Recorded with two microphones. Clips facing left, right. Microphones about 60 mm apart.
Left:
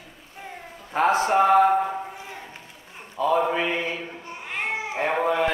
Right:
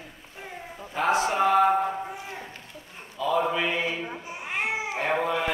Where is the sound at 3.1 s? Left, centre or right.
Left.